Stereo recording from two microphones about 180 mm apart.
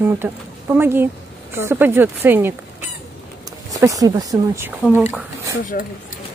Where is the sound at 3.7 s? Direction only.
20° right (ahead or behind).